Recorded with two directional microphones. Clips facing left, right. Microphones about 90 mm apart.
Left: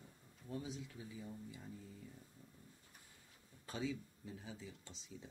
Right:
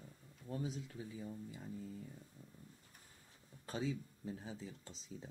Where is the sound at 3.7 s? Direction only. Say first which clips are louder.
Right 2 dB; 35° right (ahead or behind).